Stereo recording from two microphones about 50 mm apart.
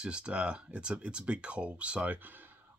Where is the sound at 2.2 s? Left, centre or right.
Right.